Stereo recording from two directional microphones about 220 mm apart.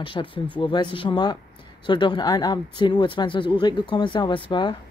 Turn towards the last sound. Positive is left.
turn(degrees=20)  # may be behind; listen again after turning